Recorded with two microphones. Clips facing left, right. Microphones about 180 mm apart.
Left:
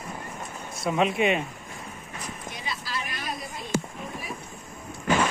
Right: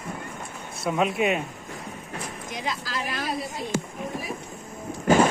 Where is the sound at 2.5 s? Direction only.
90° right.